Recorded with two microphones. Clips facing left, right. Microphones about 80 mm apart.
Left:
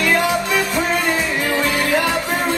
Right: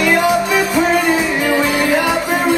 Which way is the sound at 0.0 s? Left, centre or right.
Centre.